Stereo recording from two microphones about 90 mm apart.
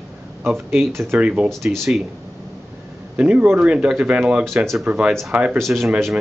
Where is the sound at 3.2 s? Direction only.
15° right (ahead or behind).